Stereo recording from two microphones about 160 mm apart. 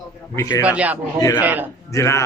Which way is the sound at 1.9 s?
20° left (ahead or behind).